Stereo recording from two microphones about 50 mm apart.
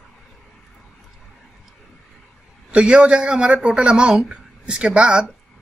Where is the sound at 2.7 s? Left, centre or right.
Centre.